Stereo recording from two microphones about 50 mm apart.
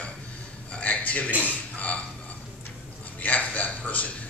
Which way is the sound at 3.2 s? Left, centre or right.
Left.